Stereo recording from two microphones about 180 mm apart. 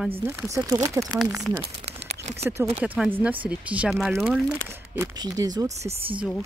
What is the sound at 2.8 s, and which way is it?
Speech, 10° right (ahead or behind).